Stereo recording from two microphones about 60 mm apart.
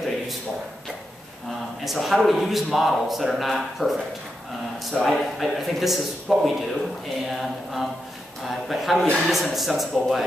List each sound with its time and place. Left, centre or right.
1.9 s a man's voice: centre
5.0 s a man's voice: centre
9.0 s a man's voice: centre
9.3 s a man's voice: centre